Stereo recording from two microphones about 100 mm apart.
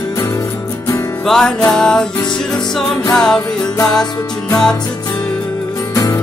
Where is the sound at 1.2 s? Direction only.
5° left (ahead or behind).